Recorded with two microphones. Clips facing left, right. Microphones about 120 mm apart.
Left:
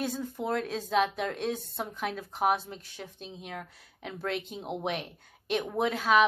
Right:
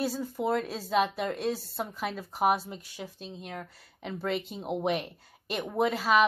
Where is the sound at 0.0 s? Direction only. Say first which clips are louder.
Right 3 dB; 5° right (ahead or behind).